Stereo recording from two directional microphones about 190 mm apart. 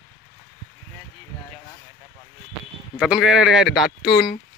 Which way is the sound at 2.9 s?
5° right (ahead or behind).